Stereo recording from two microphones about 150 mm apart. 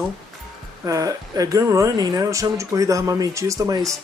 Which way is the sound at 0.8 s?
25° right (ahead or behind).